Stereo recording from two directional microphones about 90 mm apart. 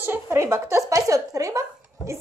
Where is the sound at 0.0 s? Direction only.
25° right (ahead or behind).